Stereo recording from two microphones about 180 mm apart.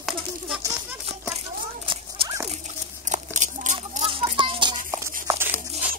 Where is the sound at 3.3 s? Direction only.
45° right (ahead or behind).